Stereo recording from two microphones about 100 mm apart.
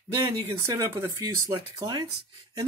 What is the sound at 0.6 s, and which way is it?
Speech, 30° right (ahead or behind).